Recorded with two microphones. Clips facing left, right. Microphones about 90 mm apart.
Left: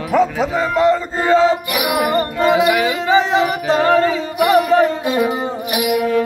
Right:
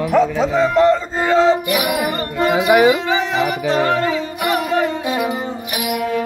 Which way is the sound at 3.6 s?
35° left (ahead or behind).